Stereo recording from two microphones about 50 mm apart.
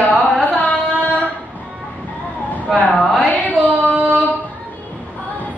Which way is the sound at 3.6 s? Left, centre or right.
Right.